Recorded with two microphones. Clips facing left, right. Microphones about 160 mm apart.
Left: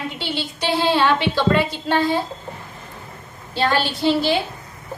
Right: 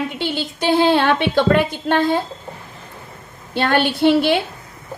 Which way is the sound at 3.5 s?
60° right (ahead or behind).